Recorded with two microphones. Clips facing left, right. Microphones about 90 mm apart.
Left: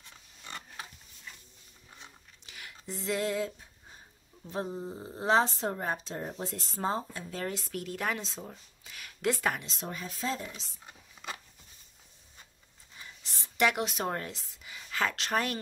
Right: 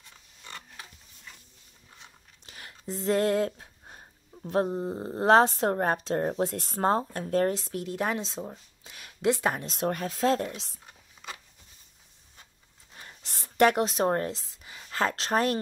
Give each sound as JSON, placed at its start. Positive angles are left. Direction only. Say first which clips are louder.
{"t": 0.5, "sound": "pig", "louder": "left 1 dB", "side_deg": 15}
{"t": 2.4, "sound": "a sound", "louder": "right 4 dB", "side_deg": -35}
{"t": 4.5, "sound": "speech", "louder": "right 8 dB", "side_deg": -55}
{"t": 7.5, "sound": "speech", "louder": "right 5 dB", "side_deg": -25}
{"t": 9.6, "sound": "speech", "louder": "right 10 dB", "side_deg": -55}
{"t": 12.9, "sound": "a sound", "louder": "right 2 dB", "side_deg": -50}